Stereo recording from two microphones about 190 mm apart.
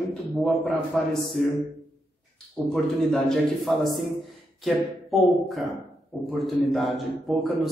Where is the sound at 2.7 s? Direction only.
Centre (ahead or behind).